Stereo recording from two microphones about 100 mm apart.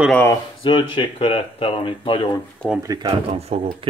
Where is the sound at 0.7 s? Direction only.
55° left (ahead or behind).